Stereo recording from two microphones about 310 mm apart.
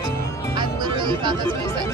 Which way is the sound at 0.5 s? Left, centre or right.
Centre.